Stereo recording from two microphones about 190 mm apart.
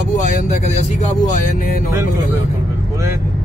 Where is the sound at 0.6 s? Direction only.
35° left (ahead or behind).